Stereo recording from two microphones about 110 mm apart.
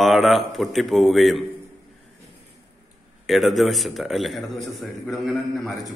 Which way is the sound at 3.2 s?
Centre (ahead or behind).